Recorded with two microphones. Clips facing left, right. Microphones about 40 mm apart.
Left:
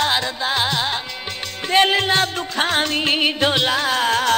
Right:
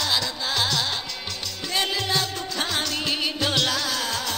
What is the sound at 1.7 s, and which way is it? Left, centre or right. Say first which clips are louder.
Music: left 9 dB; left.